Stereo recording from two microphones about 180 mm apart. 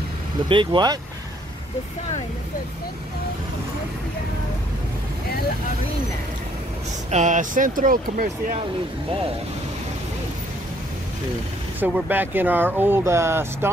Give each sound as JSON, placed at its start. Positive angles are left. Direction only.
{"t": 0.5, "sound": "speech", "side_deg": -25}
{"t": 7.1, "sound": "speech", "side_deg": -40}
{"t": 11.8, "sound": "speech", "side_deg": -10}